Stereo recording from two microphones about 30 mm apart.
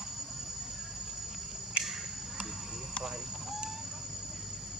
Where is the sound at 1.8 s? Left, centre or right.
Right.